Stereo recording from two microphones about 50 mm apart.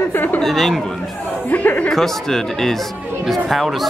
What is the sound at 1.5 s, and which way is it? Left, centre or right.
Speech, left.